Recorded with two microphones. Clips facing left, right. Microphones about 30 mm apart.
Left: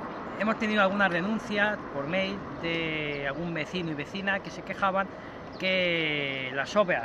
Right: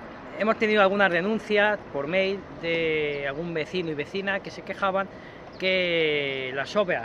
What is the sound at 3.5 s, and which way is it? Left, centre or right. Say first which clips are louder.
Speech: right 4 dB; right.